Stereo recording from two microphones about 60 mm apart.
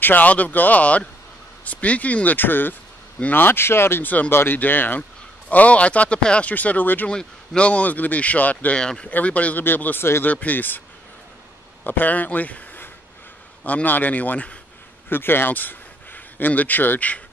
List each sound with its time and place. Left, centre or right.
0.0 s speech: left
4.0 s speech: left
4.3 s speech: left
7.1 s speech: centre
8.7 s speech: centre; by 10.8 s left
11.8 s speech: left
15.0 s speech: left